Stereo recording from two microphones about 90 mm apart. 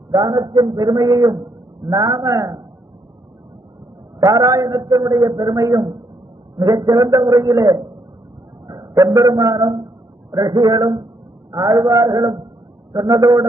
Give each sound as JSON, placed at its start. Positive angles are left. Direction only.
{"t": 0.1, "sound": "a man's voice", "side_deg": -50}
{"t": 4.2, "sound": "a man's voice", "side_deg": -40}